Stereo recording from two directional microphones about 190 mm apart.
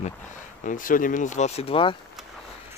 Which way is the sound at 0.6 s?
45° left (ahead or behind).